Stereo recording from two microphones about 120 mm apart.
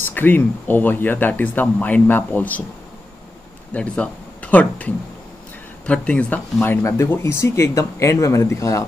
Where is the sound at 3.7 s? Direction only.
10° left (ahead or behind).